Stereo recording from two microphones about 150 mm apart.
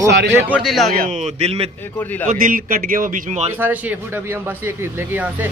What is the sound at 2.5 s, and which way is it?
Speech, 70° right (ahead or behind).